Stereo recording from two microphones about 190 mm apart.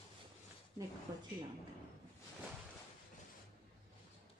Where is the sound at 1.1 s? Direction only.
20° right (ahead or behind).